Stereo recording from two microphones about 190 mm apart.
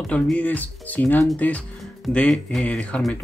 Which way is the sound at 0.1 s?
5° left (ahead or behind).